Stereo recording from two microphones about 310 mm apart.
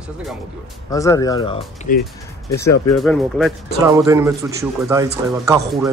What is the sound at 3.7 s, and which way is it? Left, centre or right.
Speech, centre.